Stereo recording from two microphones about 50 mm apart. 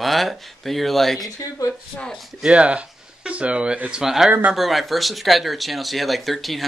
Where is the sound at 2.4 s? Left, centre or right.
Right.